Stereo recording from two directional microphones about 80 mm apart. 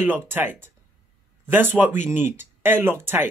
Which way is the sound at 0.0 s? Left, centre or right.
Right.